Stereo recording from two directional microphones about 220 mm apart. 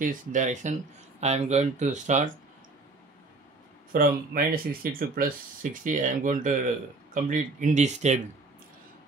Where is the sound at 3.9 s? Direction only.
40° right (ahead or behind).